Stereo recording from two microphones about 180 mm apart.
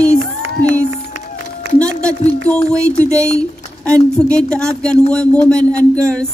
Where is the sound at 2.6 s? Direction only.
15° right (ahead or behind).